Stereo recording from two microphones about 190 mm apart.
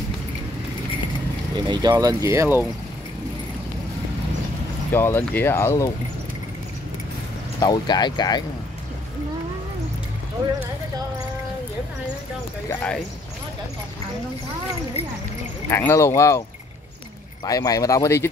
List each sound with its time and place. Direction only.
1.7 s speech: 20° right (ahead or behind)
4.9 s speech: 10° left (ahead or behind)
7.6 s speech: 20° left (ahead or behind)
12.6 s speech: 5° left (ahead or behind)
15.7 s speech: 15° left (ahead or behind)
17.5 s speech: 20° left (ahead or behind)